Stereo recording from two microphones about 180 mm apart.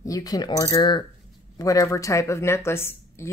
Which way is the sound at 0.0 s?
20° left (ahead or behind).